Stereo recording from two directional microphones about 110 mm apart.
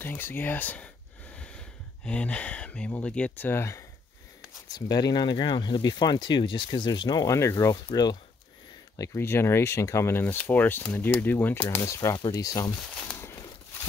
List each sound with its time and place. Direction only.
0.0 s speech: 20° left (ahead or behind)
1.3 s a sound: 10° left (ahead or behind)
2.0 s speech: 10° left (ahead or behind)
4.6 s speech: 35° left (ahead or behind)
8.9 s speech: 25° left (ahead or behind)
13.2 s a sound: 25° left (ahead or behind)